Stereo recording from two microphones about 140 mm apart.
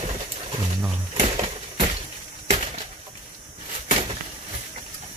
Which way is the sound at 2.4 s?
50° right (ahead or behind).